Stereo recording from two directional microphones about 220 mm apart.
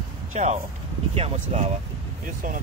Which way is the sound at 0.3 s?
35° right (ahead or behind).